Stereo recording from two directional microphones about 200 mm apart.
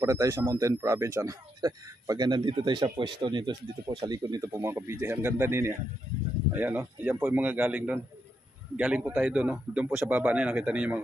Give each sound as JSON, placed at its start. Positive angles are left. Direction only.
{"t": 0.0, "sound": "a man's voice", "side_deg": -15}